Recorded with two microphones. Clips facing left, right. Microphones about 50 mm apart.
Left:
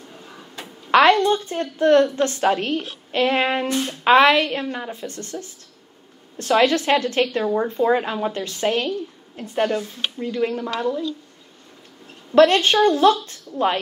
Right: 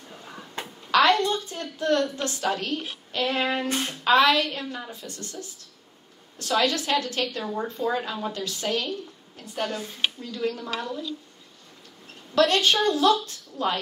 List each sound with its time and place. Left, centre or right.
0.9 s a woman's voice: left
12.4 s a woman's voice: left